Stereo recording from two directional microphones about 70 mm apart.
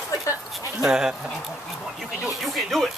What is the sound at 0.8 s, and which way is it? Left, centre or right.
Speech, centre.